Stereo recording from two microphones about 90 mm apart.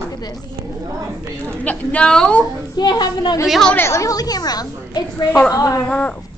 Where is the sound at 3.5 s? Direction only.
5° left (ahead or behind).